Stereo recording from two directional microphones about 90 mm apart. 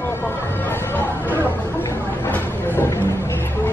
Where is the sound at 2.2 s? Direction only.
25° left (ahead or behind).